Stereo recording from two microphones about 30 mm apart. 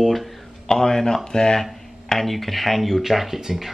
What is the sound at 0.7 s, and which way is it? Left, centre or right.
Speech, centre.